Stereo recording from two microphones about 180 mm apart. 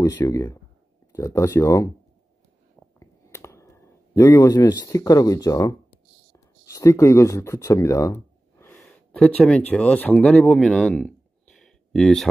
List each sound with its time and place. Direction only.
0.0 s speech: 20° left (ahead or behind)
3.0 s clicking: 15° left (ahead or behind)
6.3 s speech: 20° left (ahead or behind)
8.7 s a sound: 5° left (ahead or behind)
9.7 s speech: 10° left (ahead or behind)